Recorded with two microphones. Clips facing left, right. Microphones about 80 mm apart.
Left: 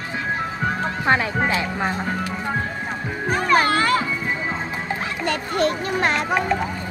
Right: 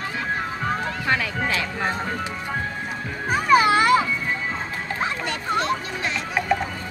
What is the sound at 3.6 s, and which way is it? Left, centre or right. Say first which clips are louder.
Children playing: right 2 dB; centre.